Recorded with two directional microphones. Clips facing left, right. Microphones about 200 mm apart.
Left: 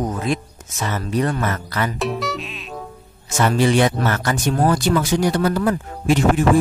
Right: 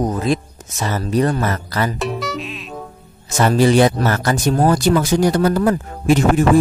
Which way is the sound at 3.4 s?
35° right (ahead or behind).